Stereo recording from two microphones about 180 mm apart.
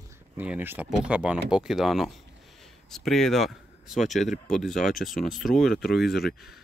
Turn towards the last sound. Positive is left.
turn(degrees=0)  # may be behind; listen again after turning